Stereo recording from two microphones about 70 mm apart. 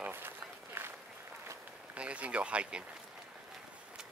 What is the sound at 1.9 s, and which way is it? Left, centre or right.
Speech, centre.